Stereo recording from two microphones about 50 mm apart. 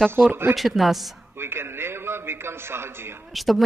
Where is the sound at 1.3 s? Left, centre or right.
Right.